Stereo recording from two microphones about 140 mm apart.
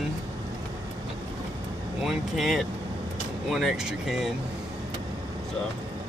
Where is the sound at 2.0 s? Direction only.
Centre (ahead or behind).